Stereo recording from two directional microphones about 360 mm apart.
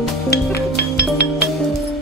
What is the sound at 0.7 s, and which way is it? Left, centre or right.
Music, left.